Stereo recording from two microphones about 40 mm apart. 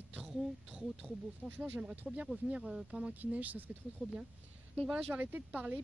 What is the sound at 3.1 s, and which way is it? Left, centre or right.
Speech, right.